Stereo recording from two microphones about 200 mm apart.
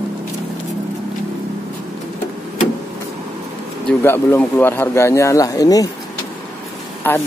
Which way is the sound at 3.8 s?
10° left (ahead or behind).